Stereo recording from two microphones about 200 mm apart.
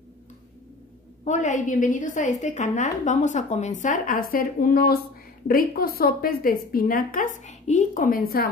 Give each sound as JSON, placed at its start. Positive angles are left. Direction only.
{"t": 1.2, "sound": "a woman's voice", "side_deg": 35}